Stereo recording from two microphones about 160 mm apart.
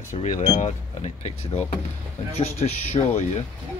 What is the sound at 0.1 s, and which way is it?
Speech, 45° left (ahead or behind).